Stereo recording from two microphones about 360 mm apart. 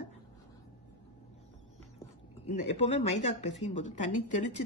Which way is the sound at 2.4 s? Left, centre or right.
Centre.